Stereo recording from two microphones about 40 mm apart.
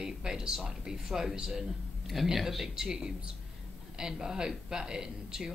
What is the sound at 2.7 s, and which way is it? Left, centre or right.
Speech, centre.